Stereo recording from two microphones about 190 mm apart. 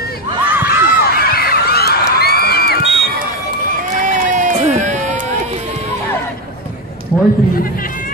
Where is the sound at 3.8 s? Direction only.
40° right (ahead or behind).